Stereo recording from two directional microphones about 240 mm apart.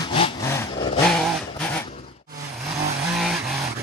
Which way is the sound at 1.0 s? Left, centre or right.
Centre.